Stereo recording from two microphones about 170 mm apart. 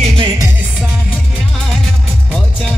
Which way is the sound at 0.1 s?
25° right (ahead or behind).